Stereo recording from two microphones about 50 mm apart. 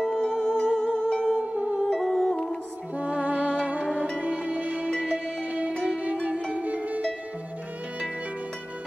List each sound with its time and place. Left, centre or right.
0.0 s music: centre
1.4 s music: right
1.9 s music: centre
3.0 s music: right
3.8 s music: centre
4.2 s music: right